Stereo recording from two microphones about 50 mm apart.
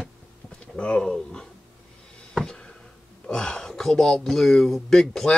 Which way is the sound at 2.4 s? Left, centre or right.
Centre.